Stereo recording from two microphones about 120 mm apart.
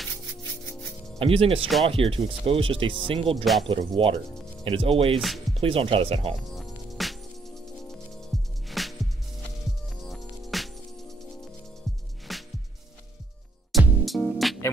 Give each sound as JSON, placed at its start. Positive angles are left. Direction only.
{"t": 1.2, "sound": "speech", "side_deg": -50}
{"t": 6.5, "sound": "music", "side_deg": 0}
{"t": 8.3, "sound": "music", "side_deg": 0}
{"t": 10.0, "sound": "music", "side_deg": 0}
{"t": 12.3, "sound": "music", "side_deg": 0}
{"t": 13.7, "sound": "music", "side_deg": 0}